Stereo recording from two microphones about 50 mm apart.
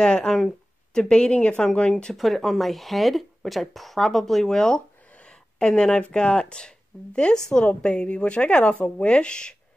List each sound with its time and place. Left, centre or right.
0.0 s speech: centre
1.0 s a woman's voice: centre
2.1 s speech: centre
5.1 s a sound: centre
6.1 s a woman's voice: centre